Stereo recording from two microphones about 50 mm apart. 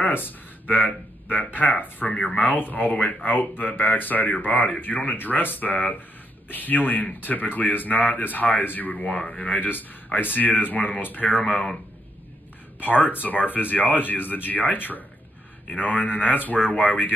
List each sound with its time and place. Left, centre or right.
0.0 s a sound: left
0.7 s a man's voice: left
11.4 s speech: centre
12.8 s a man's voice: left